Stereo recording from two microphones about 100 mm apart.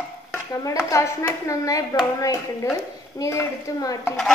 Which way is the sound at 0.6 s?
30° left (ahead or behind).